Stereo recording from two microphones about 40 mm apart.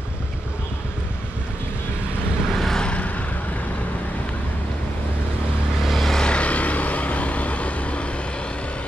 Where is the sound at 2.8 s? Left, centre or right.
Left.